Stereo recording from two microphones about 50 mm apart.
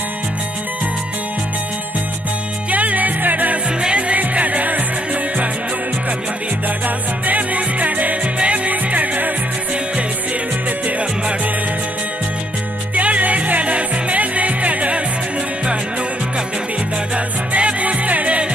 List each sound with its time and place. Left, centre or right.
2.7 s music: right
7.2 s music: right
12.9 s music: right
17.5 s music: right